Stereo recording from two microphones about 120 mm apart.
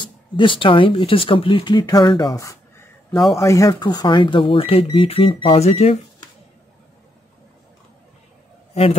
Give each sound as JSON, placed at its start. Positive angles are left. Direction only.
{"t": 0.0, "sound": "speech", "side_deg": 45}
{"t": 3.2, "sound": "speech", "side_deg": 0}
{"t": 3.4, "sound": "speech", "side_deg": 25}